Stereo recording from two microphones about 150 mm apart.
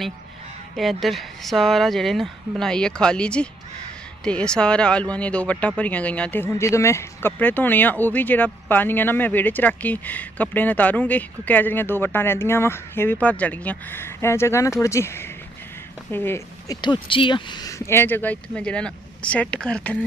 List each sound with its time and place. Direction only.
0.7 s speech: centre (ahead or behind); by 16.7 s 15° left (ahead or behind)
16.8 s speech: 35° left (ahead or behind); by 20.1 s 10° left (ahead or behind)